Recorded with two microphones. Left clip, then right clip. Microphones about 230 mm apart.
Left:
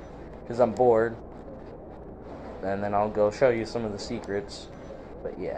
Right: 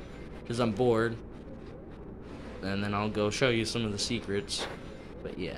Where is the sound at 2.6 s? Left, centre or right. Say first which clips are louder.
Left 7 dB; right.